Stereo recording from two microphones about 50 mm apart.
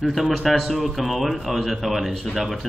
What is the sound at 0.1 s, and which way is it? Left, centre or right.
Mantra, centre.